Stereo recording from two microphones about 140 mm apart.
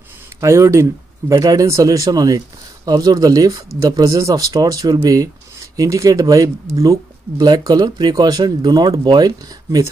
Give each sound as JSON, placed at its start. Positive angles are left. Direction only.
{"t": 0.4, "sound": "speech", "side_deg": -20}